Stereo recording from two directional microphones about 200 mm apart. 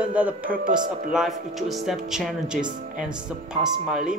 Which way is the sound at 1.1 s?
Centre (ahead or behind).